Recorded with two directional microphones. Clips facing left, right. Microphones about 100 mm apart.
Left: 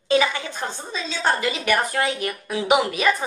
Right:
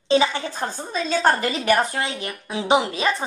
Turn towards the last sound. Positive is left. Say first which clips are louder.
# left 1 dB
turn(degrees=-30)  # may be behind; listen again after turning